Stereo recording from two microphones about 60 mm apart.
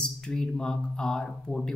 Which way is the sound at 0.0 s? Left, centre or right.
Centre.